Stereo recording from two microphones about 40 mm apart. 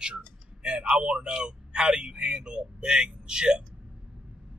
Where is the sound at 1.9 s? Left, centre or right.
Right.